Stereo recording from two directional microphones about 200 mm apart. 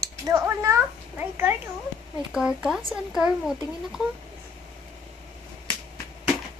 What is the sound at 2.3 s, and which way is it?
Speech, 5° right (ahead or behind).